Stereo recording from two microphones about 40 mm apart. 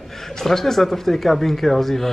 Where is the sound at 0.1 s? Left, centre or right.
Centre.